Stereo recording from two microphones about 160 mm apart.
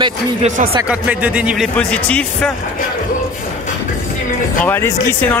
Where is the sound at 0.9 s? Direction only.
10° right (ahead or behind).